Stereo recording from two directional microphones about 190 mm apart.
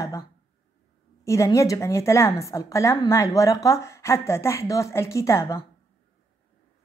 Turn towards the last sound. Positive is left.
turn(degrees=15)  # may be behind; listen again after turning